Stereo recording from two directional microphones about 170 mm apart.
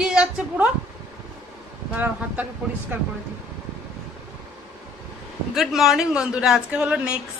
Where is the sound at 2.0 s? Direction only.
10° right (ahead or behind).